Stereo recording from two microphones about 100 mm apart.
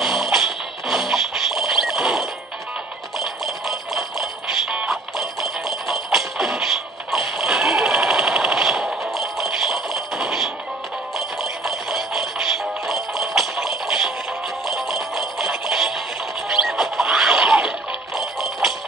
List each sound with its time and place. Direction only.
0.0 s music: 5° right (ahead or behind)